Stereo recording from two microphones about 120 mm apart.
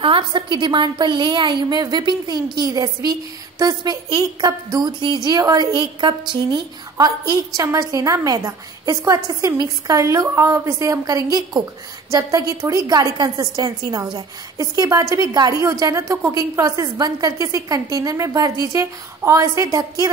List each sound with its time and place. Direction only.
0.0 s a woman's voice: 45° right (ahead or behind); by 20.1 s 30° right (ahead or behind)